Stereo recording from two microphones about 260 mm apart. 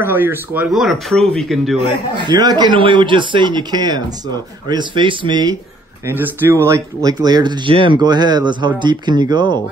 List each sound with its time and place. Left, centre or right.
0.0 s speech: centre
2.1 s speech: centre